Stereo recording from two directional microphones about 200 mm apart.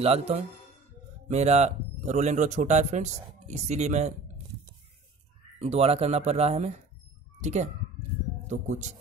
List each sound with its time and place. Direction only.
0.0 s speech: 30° right (ahead or behind)
5.6 s speech: 30° right (ahead or behind)